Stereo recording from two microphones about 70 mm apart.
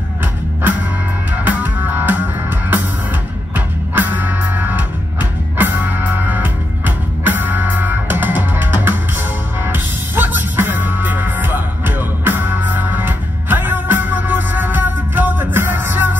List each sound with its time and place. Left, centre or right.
0.2 s music: right
3.5 s music: right